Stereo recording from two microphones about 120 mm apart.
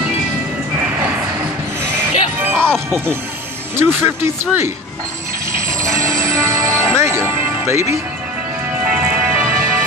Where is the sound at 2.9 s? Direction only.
20° right (ahead or behind).